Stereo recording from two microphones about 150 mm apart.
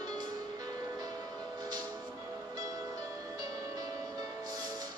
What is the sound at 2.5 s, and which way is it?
Music, 20° right (ahead or behind).